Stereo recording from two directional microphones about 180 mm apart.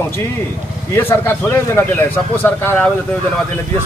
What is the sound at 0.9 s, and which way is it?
Speech, 15° left (ahead or behind).